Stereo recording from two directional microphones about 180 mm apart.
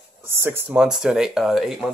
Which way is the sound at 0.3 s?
15° right (ahead or behind).